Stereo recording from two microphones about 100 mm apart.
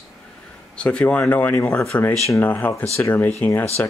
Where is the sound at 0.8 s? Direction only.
10° left (ahead or behind).